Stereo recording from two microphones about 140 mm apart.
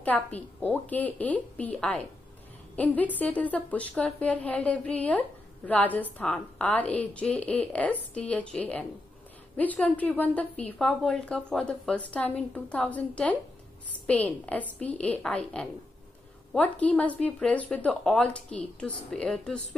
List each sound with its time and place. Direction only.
0.0 s a woman's voice: 10° left (ahead or behind)